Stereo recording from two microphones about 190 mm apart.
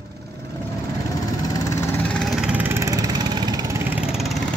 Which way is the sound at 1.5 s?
15° left (ahead or behind).